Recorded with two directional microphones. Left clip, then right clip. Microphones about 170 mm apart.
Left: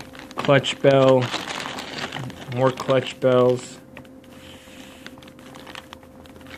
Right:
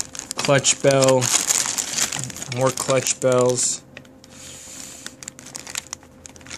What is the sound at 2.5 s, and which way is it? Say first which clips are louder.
Speech: even; 15° right (ahead or behind).